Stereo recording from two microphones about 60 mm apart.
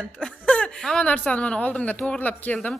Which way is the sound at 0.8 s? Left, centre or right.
Centre.